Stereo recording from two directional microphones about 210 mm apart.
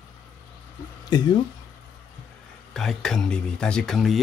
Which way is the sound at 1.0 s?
20° left (ahead or behind).